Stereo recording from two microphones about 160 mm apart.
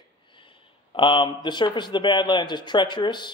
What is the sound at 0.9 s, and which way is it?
A man's voice, 30° left (ahead or behind).